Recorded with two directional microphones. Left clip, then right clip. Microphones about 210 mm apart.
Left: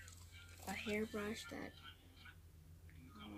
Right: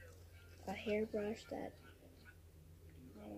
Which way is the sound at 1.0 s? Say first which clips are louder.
Right 3 dB; 10° left (ahead or behind).